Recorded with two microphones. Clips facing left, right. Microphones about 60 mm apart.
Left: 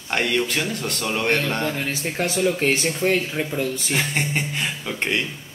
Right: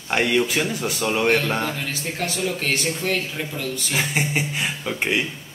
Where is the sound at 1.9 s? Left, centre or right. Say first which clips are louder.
Left 2 dB; left.